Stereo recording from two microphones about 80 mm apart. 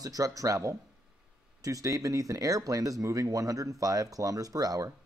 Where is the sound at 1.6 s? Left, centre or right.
Right.